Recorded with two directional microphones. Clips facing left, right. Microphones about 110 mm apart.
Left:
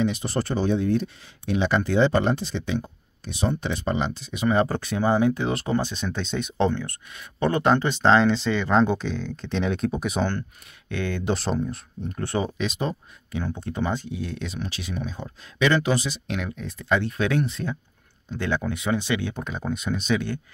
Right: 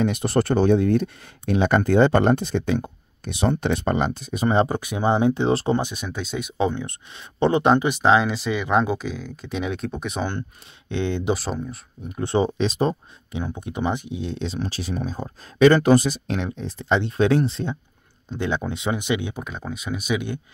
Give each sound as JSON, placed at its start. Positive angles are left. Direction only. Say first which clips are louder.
{"t": 0.0, "sound": "speech", "louder": "right 4 dB", "side_deg": -60}
{"t": 4.6, "sound": "speech", "louder": "right 1 dB", "side_deg": -15}
{"t": 5.8, "sound": "speech", "louder": "even", "side_deg": -15}
{"t": 6.8, "sound": "speech", "louder": "right 2 dB", "side_deg": -25}
{"t": 10.9, "sound": "speech", "louder": "right 3 dB", "side_deg": -20}
{"t": 11.3, "sound": "speech", "louder": "left 2 dB", "side_deg": 0}
{"t": 12.2, "sound": "speech", "louder": "right 5 dB", "side_deg": -25}
{"t": 13.3, "sound": "speech", "louder": "even", "side_deg": -15}
{"t": 16.3, "sound": "speech", "louder": "right 3 dB", "side_deg": -30}
{"t": 19.4, "sound": "speech", "louder": "left 3 dB", "side_deg": 0}